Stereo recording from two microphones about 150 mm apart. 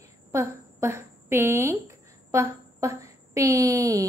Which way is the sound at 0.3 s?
20° right (ahead or behind).